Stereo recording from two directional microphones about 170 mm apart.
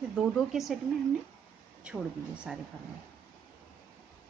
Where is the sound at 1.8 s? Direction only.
5° right (ahead or behind).